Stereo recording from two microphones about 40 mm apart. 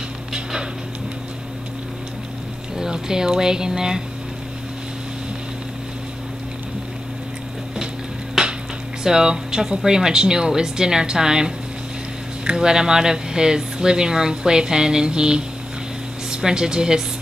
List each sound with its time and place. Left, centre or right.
0.3 s a sound: centre
2.8 s speech: centre
8.4 s music: centre
9.0 s speech: centre
12.5 s speech: centre